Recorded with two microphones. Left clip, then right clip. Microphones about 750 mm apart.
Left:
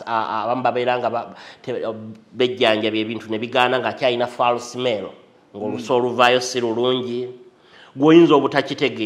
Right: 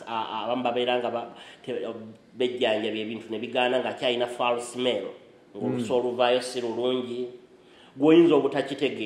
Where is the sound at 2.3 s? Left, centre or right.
Left.